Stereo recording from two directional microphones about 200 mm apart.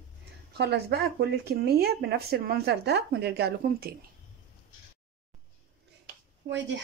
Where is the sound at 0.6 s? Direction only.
55° right (ahead or behind).